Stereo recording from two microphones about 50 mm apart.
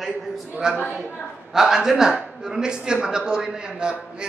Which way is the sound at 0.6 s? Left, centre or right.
Centre.